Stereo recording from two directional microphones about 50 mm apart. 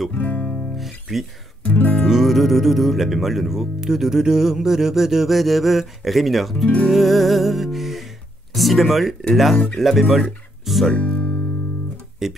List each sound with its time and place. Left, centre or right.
0.1 s music: left
0.7 s music: centre
1.6 s speech: left
2.0 s speech: centre
11.0 s music: left
12.2 s speech: centre